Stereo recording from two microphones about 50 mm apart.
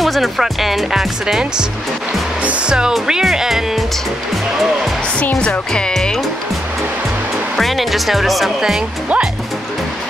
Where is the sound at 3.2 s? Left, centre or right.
Centre.